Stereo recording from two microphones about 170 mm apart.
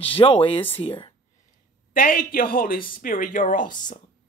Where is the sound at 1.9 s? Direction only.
55° left (ahead or behind).